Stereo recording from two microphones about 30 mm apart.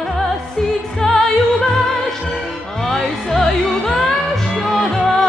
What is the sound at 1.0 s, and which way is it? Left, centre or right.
Music, centre.